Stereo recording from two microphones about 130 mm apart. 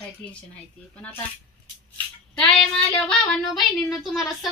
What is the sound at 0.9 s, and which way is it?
Speech, 10° left (ahead or behind).